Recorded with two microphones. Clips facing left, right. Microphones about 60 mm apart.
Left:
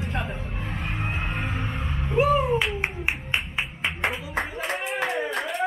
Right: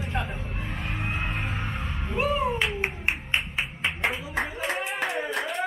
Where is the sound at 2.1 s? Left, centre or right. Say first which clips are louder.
Left 5 dB; centre.